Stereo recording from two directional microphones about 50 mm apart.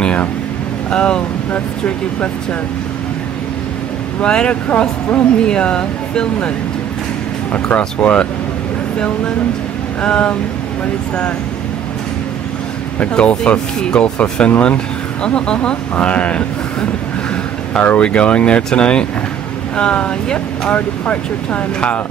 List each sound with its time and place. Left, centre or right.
0.8 s speech: left
4.2 s speech: left
7.5 s speech: left
10.0 s speech: centre
13.0 s speech: left